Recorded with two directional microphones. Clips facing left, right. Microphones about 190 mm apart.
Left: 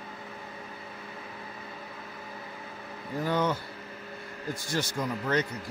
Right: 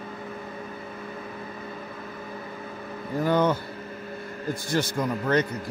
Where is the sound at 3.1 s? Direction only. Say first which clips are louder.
Right 5 dB; 55° right (ahead or behind).